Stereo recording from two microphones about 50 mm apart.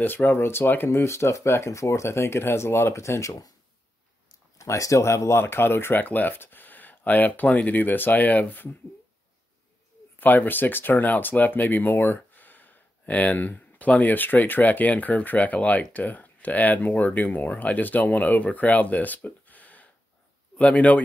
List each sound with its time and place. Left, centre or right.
0.0 s speech: left
0.8 s speech: left
2.9 s speech: left
4.6 s speech: left
6.0 s speech: left
10.1 s speech: left